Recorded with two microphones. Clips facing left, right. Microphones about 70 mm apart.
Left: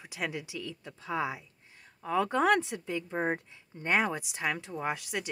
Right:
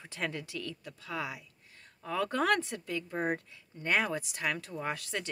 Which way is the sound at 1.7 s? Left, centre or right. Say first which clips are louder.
Left 5 dB; centre.